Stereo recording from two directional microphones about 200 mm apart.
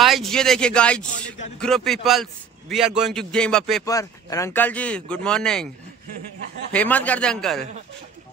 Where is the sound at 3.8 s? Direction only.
15° left (ahead or behind).